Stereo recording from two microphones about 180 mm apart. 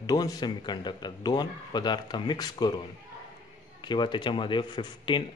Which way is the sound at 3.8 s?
25° left (ahead or behind).